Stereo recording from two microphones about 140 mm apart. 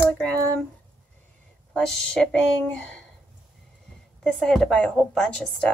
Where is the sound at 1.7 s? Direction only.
5° left (ahead or behind).